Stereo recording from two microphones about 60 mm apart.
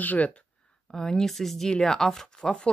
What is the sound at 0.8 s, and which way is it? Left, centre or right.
Speech, centre.